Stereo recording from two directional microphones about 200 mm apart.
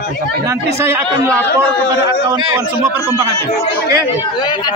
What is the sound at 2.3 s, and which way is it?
Speech, 20° right (ahead or behind).